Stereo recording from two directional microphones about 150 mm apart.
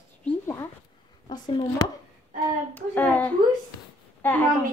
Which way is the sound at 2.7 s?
10° left (ahead or behind).